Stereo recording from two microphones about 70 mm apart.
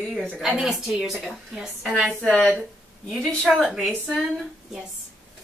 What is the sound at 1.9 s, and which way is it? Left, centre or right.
Speech, centre.